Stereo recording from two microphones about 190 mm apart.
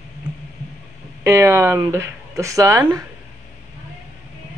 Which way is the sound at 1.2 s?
15° right (ahead or behind).